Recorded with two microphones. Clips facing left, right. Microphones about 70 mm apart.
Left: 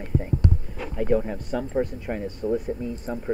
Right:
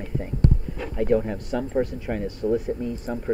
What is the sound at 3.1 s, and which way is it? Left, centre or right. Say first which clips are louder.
Speech: even; centre.